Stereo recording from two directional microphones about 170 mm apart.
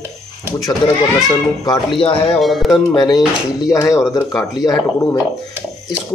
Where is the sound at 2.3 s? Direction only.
Centre (ahead or behind).